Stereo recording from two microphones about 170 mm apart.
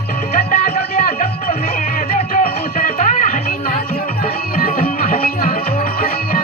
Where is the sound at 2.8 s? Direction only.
45° left (ahead or behind).